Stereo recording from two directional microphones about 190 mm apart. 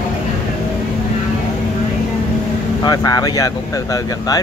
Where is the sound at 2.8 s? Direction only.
20° left (ahead or behind).